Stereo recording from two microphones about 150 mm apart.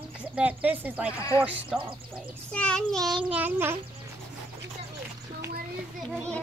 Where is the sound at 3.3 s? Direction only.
15° right (ahead or behind).